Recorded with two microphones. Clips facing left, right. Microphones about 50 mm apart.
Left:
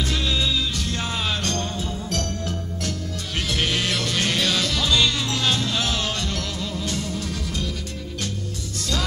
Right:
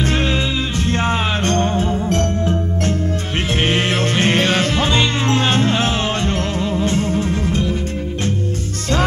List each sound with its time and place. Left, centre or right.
0.0 s music: right